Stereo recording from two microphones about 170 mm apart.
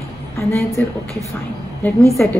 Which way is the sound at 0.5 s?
5° left (ahead or behind).